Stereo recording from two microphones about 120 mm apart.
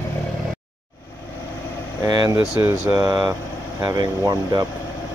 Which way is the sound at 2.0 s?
30° right (ahead or behind).